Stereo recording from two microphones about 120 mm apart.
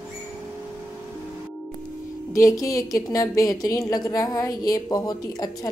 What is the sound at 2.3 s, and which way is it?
A woman's voice, 25° left (ahead or behind).